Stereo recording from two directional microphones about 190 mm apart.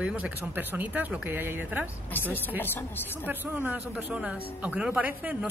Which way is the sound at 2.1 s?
10° left (ahead or behind).